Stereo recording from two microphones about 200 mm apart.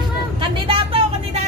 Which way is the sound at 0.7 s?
25° right (ahead or behind).